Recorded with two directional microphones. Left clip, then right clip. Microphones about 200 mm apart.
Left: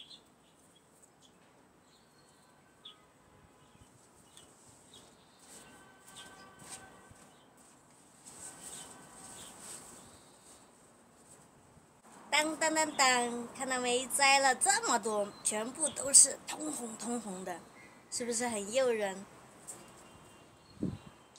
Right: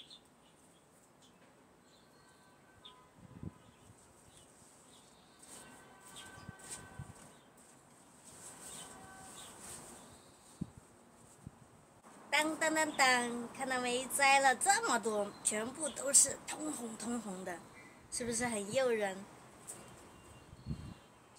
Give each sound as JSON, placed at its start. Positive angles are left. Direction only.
{"t": 12.3, "sound": "a woman's voice", "side_deg": 15}